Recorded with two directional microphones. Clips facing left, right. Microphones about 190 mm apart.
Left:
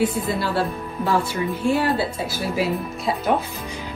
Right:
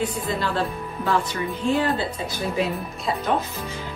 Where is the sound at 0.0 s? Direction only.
10° left (ahead or behind).